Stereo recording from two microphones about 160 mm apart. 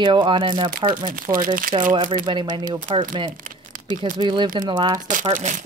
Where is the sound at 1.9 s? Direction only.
25° right (ahead or behind).